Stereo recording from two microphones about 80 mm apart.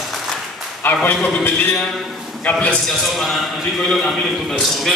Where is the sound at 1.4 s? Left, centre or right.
Left.